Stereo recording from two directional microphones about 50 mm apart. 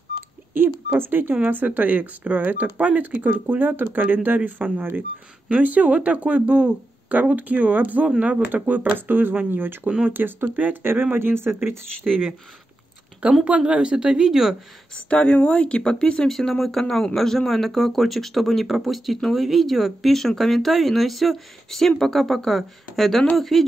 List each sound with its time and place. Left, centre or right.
0.6 s speech: right
9.5 s speech: right
12.0 s speech: centre
13.2 s speech: right
13.6 s speech: centre
15.0 s speech: left
16.3 s speech: centre